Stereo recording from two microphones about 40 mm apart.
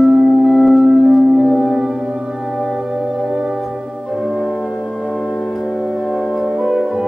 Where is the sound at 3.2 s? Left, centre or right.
Centre.